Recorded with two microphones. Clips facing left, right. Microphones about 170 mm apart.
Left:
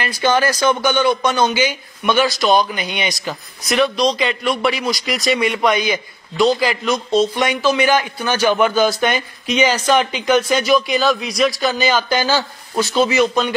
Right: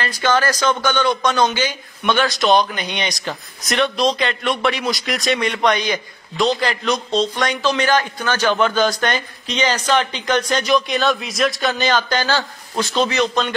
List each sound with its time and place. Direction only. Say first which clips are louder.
0.0 s a man's voice: left 2 dB; 10° left (ahead or behind)